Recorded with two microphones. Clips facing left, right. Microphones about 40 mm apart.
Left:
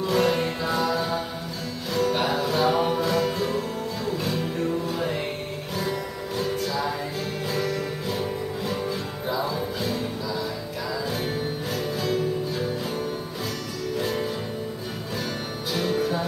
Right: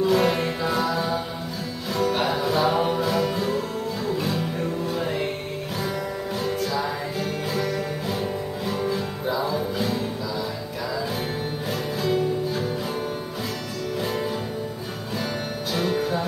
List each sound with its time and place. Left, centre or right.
0.0 s music: centre
6.4 s music: centre
11.7 s music: centre
13.9 s music: centre
15.7 s music: centre